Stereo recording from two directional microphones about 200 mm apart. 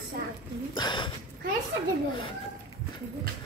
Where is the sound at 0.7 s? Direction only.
25° left (ahead or behind).